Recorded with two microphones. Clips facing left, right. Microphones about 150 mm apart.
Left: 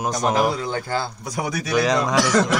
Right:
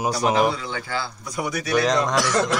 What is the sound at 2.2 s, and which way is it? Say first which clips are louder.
Speech: left 3 dB; 90° left.